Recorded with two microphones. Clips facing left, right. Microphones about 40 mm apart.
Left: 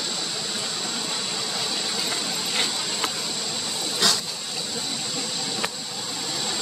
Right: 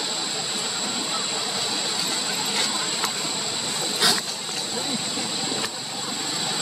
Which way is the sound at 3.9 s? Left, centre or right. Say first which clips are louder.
Right 1 dB; centre.